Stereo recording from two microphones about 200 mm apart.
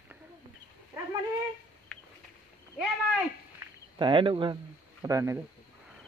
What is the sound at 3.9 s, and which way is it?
Speech, 25° right (ahead or behind).